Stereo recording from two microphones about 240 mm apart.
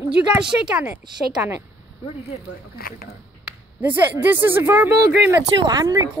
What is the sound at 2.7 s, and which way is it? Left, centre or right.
Speech, left.